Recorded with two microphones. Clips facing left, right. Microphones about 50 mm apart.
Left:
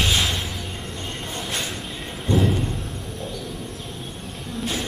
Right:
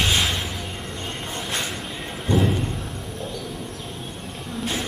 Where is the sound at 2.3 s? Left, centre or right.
Centre.